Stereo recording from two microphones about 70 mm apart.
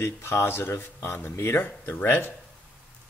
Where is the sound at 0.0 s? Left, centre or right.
Left.